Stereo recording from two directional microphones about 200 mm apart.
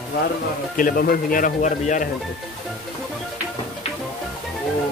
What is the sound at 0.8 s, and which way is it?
Speech, 45° left (ahead or behind).